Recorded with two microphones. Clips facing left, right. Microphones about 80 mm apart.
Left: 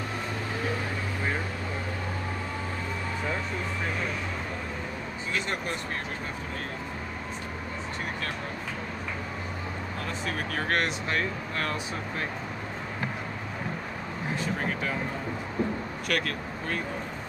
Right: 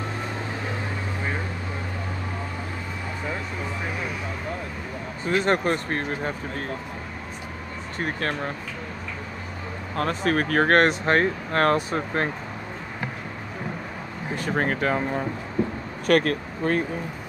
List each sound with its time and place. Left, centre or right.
5.3 s speech: right
8.0 s speech: right
9.9 s speech: right
14.4 s speech: right